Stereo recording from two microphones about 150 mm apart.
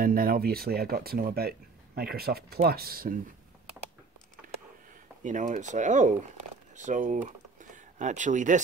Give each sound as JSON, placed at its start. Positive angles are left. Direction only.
{"t": 0.0, "sound": "speech", "side_deg": -80}
{"t": 5.2, "sound": "speech", "side_deg": -55}
{"t": 7.2, "sound": "a sound", "side_deg": -55}